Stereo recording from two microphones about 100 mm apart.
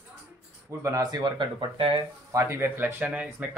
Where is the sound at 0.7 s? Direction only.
30° right (ahead or behind).